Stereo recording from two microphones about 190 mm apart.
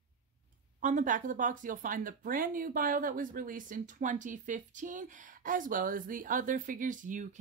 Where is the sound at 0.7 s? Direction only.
45° right (ahead or behind).